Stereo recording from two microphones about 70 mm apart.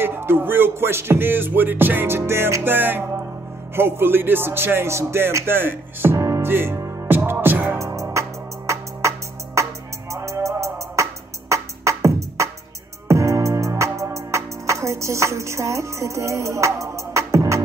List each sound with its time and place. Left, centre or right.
0.0 s music: right
6.1 s music: right
6.5 s music: right
7.8 s music: right